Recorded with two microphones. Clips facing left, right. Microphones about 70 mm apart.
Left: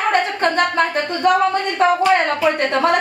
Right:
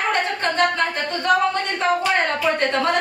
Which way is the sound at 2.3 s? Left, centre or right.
Left.